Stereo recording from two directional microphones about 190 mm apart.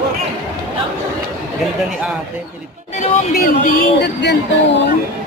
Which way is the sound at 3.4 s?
60° left (ahead or behind).